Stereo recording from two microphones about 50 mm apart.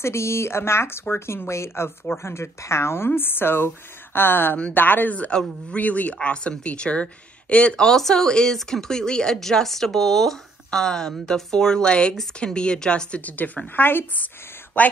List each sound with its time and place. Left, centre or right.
0.0 s speech: left
3.1 s a woman's voice: left
5.3 s speech: centre
5.8 s speech: left
7.8 s speech: centre
13.2 s speech: left
14.8 s speech: left